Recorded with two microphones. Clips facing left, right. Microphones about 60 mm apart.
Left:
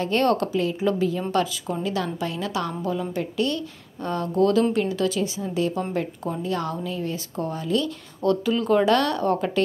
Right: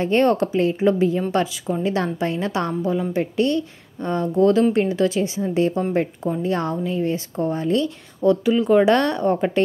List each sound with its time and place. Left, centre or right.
0.0 s a woman's voice: right
2.9 s a woman's voice: right
8.2 s a woman's voice: centre